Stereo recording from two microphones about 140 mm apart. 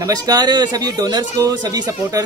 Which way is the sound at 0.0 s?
30° right (ahead or behind).